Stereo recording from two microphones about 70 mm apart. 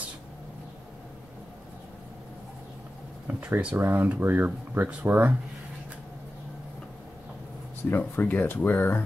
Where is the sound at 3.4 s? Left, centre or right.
Right.